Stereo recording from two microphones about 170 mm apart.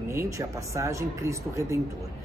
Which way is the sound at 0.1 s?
15° right (ahead or behind).